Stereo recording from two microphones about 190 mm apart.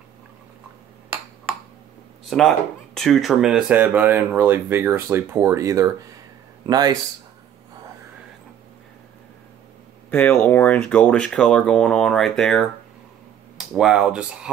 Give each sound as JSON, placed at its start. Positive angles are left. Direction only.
{"t": 2.2, "sound": "speech", "side_deg": 0}
{"t": 10.1, "sound": "speech", "side_deg": 10}